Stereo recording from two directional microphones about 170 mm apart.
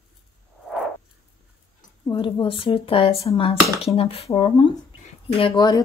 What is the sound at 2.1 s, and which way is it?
Speech, 30° left (ahead or behind).